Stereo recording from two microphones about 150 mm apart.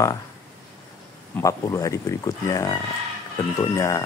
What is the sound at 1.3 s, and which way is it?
Speech, 20° left (ahead or behind).